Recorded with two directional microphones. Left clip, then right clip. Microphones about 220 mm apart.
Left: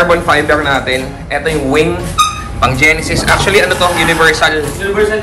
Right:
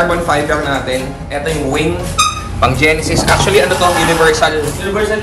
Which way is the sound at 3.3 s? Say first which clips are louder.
Left 1 dB; 10° right (ahead or behind).